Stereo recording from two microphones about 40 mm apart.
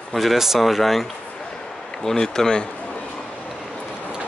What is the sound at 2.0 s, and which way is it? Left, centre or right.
Speech, centre.